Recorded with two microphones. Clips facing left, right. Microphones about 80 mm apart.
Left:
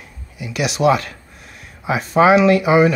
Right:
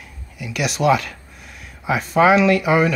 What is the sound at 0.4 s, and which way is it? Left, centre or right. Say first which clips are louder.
Speech: left 3 dB; centre.